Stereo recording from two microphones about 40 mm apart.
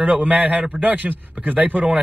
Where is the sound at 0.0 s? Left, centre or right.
Right.